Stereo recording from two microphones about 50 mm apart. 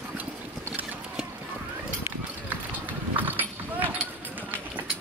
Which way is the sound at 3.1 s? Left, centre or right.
Right.